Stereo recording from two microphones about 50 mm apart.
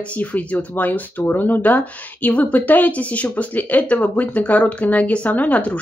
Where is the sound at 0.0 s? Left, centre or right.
Left.